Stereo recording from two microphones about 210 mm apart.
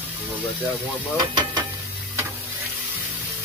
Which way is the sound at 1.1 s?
20° right (ahead or behind).